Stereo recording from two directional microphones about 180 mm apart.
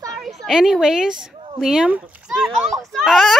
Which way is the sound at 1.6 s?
5° right (ahead or behind).